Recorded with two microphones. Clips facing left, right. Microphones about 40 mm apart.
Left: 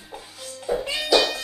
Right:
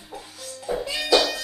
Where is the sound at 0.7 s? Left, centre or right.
Centre.